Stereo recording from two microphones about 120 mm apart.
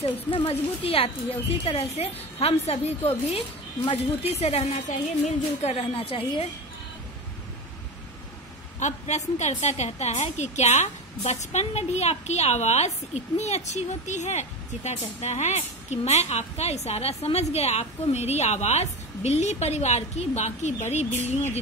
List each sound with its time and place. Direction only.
0.0 s speech: 55° left (ahead or behind)
8.7 s a woman's voice: 75° left (ahead or behind)